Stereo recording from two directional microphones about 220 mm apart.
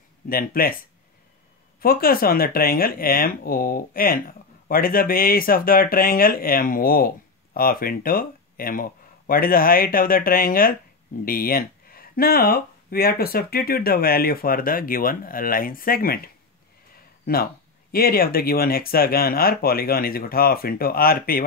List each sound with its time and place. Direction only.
0.3 s speech: 40° left (ahead or behind)
1.8 s speech: 40° left (ahead or behind)
17.3 s speech: 40° left (ahead or behind)